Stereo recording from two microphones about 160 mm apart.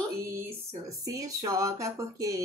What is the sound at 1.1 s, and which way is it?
Speech, 20° right (ahead or behind).